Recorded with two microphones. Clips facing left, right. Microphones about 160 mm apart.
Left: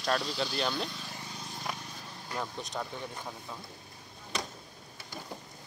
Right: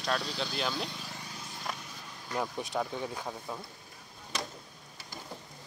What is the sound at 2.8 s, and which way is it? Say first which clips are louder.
Speech: right 5 dB; 10° right (ahead or behind).